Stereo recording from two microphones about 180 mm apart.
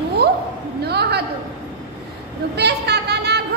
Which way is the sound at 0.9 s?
65° right (ahead or behind).